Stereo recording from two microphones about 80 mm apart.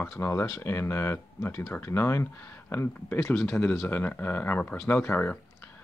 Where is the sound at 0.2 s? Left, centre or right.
Left.